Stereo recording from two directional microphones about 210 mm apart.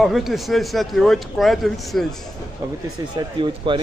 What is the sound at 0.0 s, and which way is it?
Speech, centre (ahead or behind).